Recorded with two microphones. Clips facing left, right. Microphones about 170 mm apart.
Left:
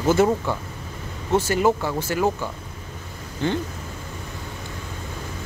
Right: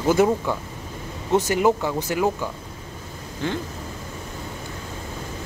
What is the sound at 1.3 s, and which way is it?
Speech, 15° right (ahead or behind).